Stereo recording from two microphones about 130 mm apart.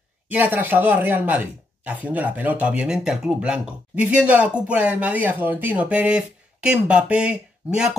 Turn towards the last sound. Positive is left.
turn(degrees=-5)  # may be behind; listen again after turning